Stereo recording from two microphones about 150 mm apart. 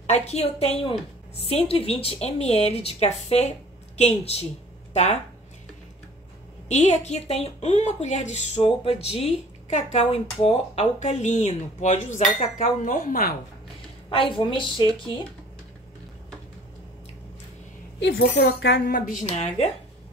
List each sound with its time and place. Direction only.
0.0 s speech: 45° left (ahead or behind)
6.7 s speech: 50° left (ahead or behind); by 13.3 s 70° left (ahead or behind)
14.0 s speech: 35° left (ahead or behind)
18.1 s speech: 90° left
19.2 s speech: 45° left (ahead or behind)